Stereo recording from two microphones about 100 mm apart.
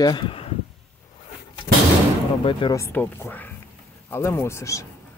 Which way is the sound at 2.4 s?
55° left (ahead or behind).